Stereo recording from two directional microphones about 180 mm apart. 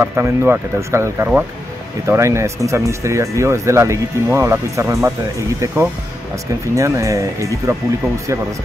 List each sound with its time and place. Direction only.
0.0 s speech: 10° right (ahead or behind)
6.7 s speech: 15° right (ahead or behind)